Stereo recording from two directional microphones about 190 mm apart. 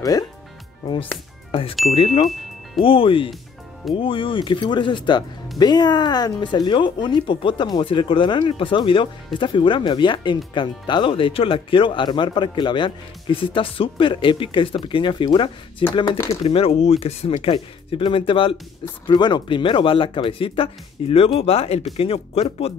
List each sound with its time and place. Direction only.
1.8 s speech: 40° left (ahead or behind)
2.8 s speech: 30° left (ahead or behind)
16.4 s speech: 30° left (ahead or behind)